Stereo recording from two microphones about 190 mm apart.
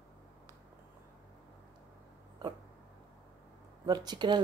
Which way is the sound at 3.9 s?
20° right (ahead or behind).